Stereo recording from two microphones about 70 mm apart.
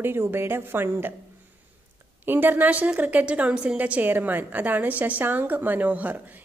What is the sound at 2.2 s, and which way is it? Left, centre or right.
A woman's voice, right.